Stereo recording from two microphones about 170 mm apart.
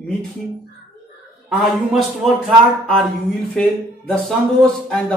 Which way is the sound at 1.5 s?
Centre (ahead or behind).